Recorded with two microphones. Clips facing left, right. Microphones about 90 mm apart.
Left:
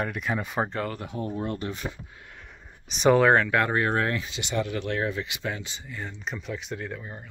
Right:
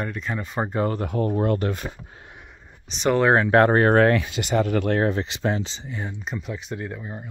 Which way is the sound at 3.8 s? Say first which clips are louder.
Right 9 dB; 70° right (ahead or behind).